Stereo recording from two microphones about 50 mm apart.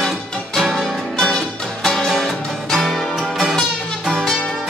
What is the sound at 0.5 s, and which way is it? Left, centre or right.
Music, centre.